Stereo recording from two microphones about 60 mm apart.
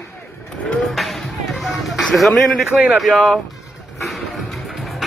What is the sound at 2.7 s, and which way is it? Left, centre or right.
Speech, right.